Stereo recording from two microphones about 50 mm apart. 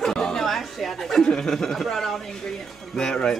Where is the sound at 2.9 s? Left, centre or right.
Centre.